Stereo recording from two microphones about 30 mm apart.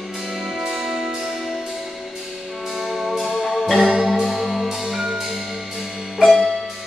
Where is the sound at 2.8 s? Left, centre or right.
Centre.